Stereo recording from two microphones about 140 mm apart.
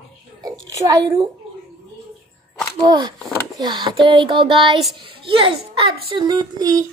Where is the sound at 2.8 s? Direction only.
30° right (ahead or behind).